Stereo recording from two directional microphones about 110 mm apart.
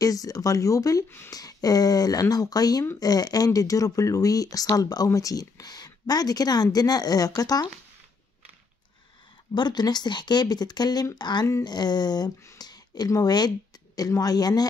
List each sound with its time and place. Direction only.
0.0 s speech: 35° left (ahead or behind)
9.5 s speech: 40° left (ahead or behind)